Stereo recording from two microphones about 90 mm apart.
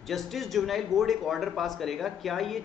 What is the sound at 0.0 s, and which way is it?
Speech, centre (ahead or behind).